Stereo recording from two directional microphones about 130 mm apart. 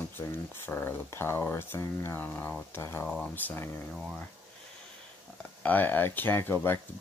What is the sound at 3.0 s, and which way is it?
Speech, 5° left (ahead or behind).